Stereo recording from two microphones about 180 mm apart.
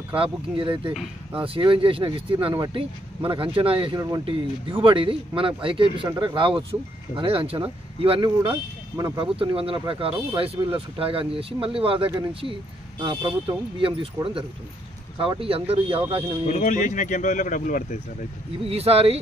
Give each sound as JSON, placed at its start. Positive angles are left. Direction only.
{"t": 0.1, "sound": "speech", "side_deg": -30}
{"t": 8.5, "sound": "speech", "side_deg": -20}
{"t": 9.2, "sound": "speech", "side_deg": -30}
{"t": 16.4, "sound": "speech", "side_deg": 45}
{"t": 18.7, "sound": "speech", "side_deg": -35}